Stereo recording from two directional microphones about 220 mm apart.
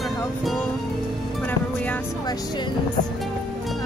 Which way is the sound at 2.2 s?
20° left (ahead or behind).